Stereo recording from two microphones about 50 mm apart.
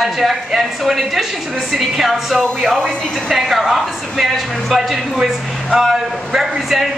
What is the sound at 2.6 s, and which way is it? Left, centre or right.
Speech, centre.